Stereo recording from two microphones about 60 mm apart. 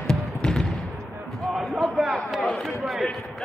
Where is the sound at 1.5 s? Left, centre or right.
Centre.